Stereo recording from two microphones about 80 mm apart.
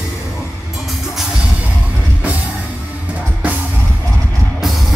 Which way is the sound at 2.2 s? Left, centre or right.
Centre.